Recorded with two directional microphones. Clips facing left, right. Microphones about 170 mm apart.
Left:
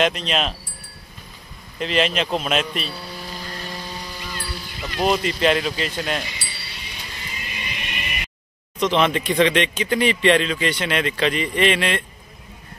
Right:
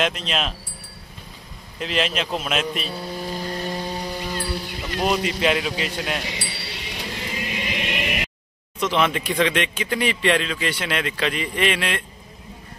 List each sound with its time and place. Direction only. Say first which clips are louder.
0.0 s speech: left 3 dB; centre (ahead or behind)
1.8 s speech: left 3 dB; centre (ahead or behind)
2.9 s speech: right 5 dB; 45° right (ahead or behind)
3.8 s a sound: right 6 dB; 55° right (ahead or behind)
5.1 s speech: left 2 dB; 10° right (ahead or behind)
6.2 s a sound: right 5 dB; 80° right
8.7 s speech: left 2 dB; 5° right (ahead or behind)